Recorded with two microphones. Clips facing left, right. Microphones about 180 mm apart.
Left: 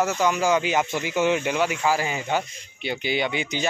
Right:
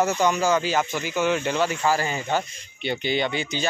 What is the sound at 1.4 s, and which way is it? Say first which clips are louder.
Speech: even; 10° left (ahead or behind).